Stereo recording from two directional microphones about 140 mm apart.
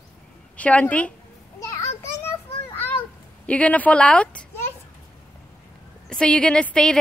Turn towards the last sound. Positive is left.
turn(degrees=5)  # may be behind; listen again after turning